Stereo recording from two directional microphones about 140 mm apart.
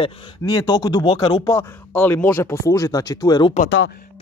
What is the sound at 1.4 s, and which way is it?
Speech, 15° left (ahead or behind).